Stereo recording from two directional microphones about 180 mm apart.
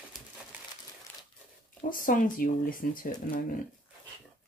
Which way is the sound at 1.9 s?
50° left (ahead or behind).